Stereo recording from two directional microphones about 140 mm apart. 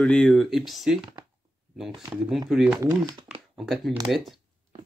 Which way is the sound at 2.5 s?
5° right (ahead or behind).